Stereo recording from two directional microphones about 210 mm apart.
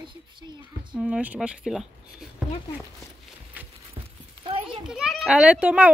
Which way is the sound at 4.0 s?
25° right (ahead or behind).